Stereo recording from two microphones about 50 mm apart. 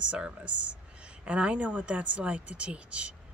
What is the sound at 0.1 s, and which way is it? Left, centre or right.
Speech, right.